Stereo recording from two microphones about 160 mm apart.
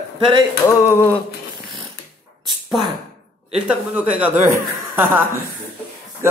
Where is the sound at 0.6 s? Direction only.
15° left (ahead or behind).